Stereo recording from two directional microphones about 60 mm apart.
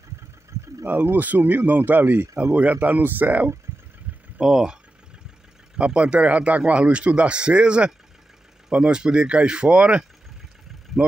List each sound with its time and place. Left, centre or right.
0.8 s speech: right
4.4 s speech: centre
5.8 s speech: centre